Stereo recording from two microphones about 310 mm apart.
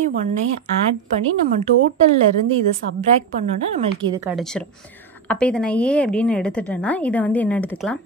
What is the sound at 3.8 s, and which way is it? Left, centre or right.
Speech, centre.